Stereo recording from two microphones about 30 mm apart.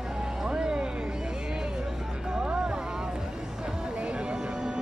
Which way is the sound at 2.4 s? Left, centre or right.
Right.